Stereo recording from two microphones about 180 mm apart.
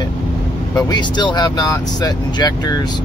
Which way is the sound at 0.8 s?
25° left (ahead or behind).